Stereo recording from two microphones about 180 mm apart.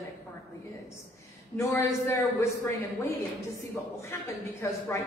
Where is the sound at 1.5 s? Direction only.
15° left (ahead or behind).